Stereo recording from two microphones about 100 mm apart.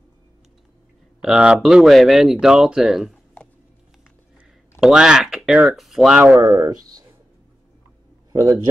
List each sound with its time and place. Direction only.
1.2 s speech: 5° right (ahead or behind)
4.7 s speech: 5° right (ahead or behind)
6.4 s speech: 25° right (ahead or behind)
8.3 s a man's voice: 30° right (ahead or behind)